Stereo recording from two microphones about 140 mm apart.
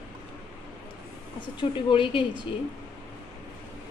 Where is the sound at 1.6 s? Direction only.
35° left (ahead or behind).